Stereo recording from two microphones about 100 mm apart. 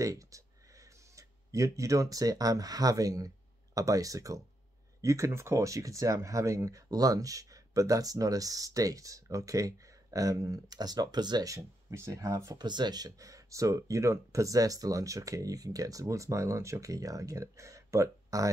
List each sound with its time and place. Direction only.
0.0 s speech: 35° right (ahead or behind)
12.5 s speech: 45° right (ahead or behind)